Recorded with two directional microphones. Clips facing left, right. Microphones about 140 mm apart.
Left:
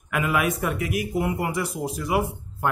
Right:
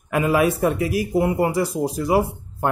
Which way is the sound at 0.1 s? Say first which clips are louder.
Right 5 dB; 30° right (ahead or behind).